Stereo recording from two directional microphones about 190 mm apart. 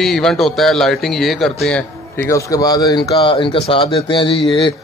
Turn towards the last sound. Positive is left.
turn(degrees=25)  # may be behind; listen again after turning